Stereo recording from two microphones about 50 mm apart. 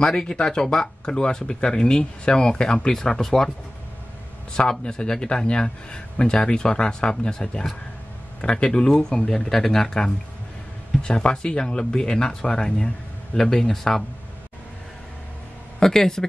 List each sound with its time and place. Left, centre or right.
0.0 s speech: centre
4.6 s speech: centre
15.8 s speech: centre